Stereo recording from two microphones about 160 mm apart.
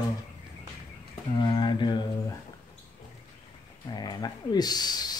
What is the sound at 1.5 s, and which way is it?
Mantra, 30° left (ahead or behind).